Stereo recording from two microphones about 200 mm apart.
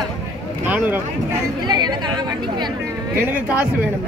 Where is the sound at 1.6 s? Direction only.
20° right (ahead or behind).